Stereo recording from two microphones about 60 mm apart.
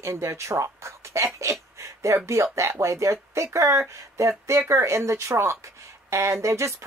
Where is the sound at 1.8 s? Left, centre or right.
Right.